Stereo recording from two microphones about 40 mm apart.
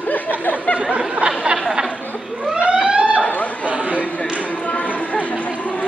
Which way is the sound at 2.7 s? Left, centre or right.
Right.